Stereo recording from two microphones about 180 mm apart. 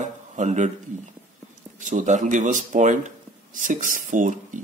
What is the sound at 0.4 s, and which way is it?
Speech, 40° right (ahead or behind).